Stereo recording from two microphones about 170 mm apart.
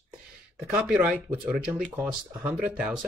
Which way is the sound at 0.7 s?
5° right (ahead or behind).